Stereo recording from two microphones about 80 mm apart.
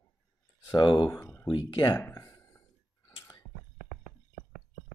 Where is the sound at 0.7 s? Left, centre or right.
Left.